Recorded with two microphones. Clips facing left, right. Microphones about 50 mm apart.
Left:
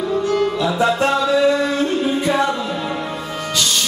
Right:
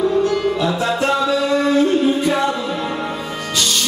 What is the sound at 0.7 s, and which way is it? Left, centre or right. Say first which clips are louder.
Music: left 1 dB; left.